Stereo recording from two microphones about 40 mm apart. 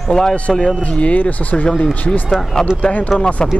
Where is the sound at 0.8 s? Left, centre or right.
Left.